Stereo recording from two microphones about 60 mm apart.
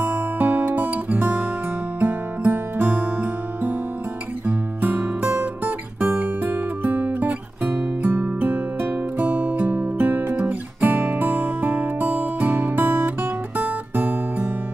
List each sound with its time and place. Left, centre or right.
0.0 s music: right
4.8 s music: right